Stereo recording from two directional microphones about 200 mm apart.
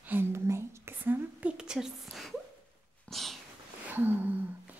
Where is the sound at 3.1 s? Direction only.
Centre (ahead or behind).